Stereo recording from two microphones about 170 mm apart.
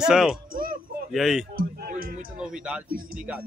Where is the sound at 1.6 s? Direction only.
60° right (ahead or behind).